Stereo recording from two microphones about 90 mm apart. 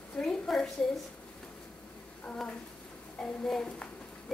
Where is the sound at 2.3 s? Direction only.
15° left (ahead or behind).